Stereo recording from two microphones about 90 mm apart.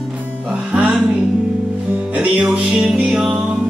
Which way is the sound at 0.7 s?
15° right (ahead or behind).